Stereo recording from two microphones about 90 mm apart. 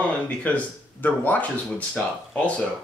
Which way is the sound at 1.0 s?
20° left (ahead or behind).